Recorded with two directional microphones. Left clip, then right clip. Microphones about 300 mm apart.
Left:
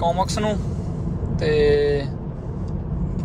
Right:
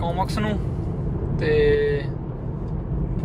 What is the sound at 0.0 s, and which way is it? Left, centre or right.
Speech, centre.